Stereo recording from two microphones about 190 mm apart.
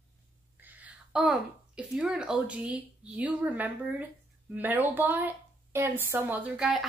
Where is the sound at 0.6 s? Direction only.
10° right (ahead or behind).